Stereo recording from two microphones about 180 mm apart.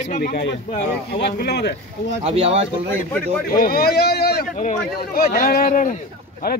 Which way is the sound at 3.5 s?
55° left (ahead or behind).